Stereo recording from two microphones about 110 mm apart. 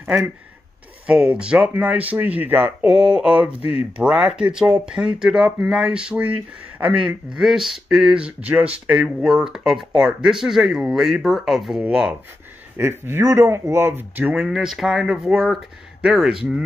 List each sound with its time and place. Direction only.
1.0 s speech: 10° right (ahead or behind)
12.7 s speech: 20° right (ahead or behind)
14.4 s speech: 5° right (ahead or behind)